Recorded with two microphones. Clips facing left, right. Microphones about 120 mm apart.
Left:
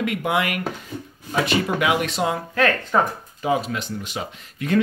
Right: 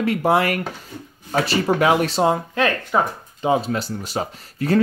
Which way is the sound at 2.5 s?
15° right (ahead or behind).